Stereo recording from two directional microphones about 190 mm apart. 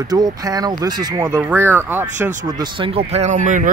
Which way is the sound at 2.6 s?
25° right (ahead or behind).